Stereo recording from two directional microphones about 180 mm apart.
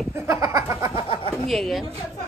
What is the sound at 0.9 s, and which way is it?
Speech, 35° left (ahead or behind).